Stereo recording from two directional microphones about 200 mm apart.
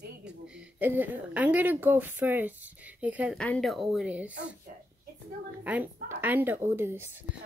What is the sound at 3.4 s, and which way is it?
Speech, 5° left (ahead or behind).